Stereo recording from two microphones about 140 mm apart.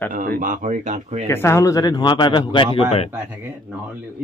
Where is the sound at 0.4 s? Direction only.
70° right (ahead or behind).